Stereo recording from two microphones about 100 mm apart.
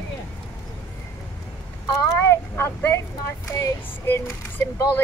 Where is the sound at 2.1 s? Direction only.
25° left (ahead or behind).